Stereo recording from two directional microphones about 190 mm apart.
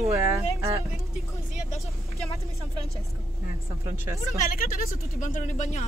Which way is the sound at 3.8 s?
15° right (ahead or behind).